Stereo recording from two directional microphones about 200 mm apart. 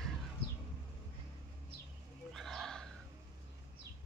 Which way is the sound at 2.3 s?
Centre (ahead or behind).